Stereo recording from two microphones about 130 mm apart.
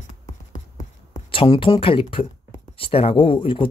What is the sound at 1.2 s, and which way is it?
Speech, 40° left (ahead or behind).